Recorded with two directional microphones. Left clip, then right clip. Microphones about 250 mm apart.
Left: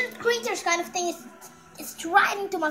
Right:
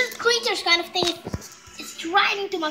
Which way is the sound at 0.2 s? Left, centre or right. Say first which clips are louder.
Right 3 dB; centre.